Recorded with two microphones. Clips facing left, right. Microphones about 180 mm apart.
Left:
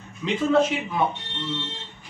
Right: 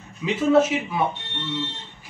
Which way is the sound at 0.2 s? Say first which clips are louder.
Right 2 dB; 5° right (ahead or behind).